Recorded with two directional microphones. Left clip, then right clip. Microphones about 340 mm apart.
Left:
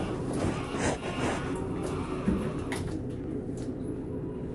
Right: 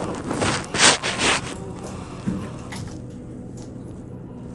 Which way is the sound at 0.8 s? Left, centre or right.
Left.